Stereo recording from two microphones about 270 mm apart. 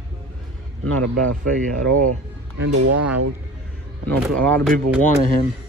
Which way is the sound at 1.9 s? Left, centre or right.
Right.